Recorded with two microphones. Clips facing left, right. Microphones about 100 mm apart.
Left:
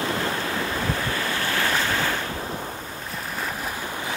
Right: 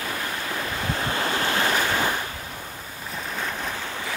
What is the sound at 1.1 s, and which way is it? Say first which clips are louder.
Waves: right 2 dB; 20° right (ahead or behind).